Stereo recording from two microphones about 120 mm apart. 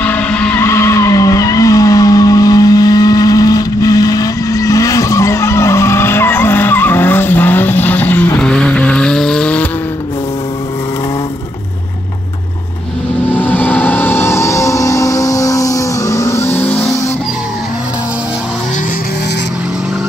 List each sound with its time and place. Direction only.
0.0 s vehicle: 10° left (ahead or behind)
0.7 s vehicle: 25° left (ahead or behind)
13.3 s vehicle: 15° left (ahead or behind)